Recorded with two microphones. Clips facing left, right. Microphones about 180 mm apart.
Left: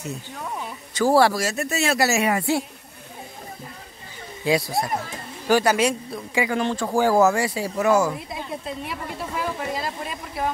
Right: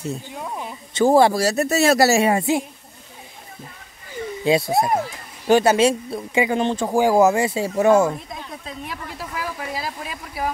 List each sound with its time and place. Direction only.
0.9 s speech: 20° right (ahead or behind)
1.4 s a man's voice: 40° right (ahead or behind)
4.5 s speech: 25° right (ahead or behind)
8.3 s speech: 5° left (ahead or behind)